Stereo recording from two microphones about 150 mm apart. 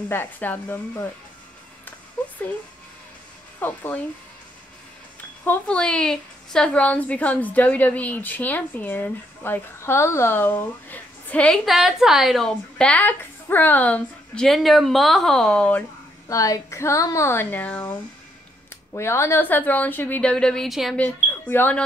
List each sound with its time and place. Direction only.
0.1 s a woman's voice: 15° left (ahead or behind)
3.5 s speech: 10° left (ahead or behind)
5.4 s a woman's voice: 10° left (ahead or behind)
16.3 s a woman's voice: 20° left (ahead or behind)
18.9 s a woman's voice: 15° left (ahead or behind); by 21.0 s centre (ahead or behind)
21.0 s a woman's voice: 15° left (ahead or behind)